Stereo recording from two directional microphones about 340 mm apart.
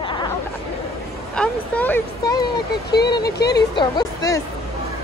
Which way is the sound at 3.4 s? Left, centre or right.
Left.